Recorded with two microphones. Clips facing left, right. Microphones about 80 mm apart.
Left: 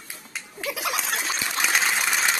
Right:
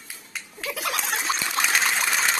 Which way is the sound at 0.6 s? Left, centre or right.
Centre.